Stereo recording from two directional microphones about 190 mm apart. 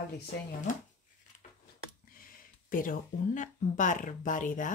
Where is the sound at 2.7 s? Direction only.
45° left (ahead or behind).